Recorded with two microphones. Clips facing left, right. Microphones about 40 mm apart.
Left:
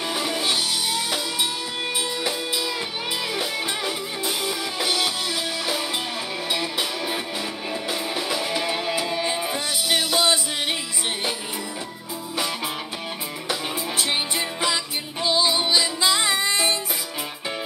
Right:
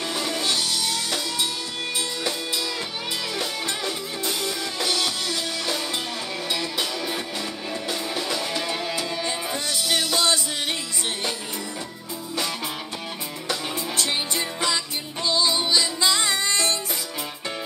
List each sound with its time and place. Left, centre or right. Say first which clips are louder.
0.1 s music: left 2 dB; centre
3.3 s music: left 2 dB; centre
13.5 s music: left 1 dB; centre